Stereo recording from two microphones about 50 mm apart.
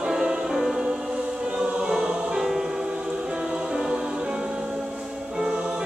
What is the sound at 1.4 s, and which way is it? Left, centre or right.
Choir, right.